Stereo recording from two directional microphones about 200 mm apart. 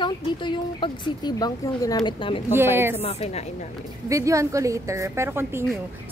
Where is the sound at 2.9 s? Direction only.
30° left (ahead or behind).